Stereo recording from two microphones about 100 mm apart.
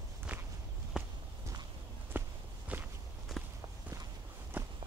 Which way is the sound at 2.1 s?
20° right (ahead or behind).